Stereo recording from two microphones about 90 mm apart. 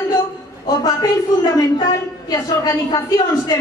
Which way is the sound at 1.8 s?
45° left (ahead or behind).